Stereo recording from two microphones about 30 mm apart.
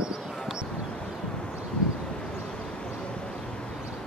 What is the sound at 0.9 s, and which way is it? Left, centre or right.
Vehicle, left.